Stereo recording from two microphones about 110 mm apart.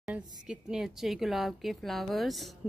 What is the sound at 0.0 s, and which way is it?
A woman's voice, 5° right (ahead or behind).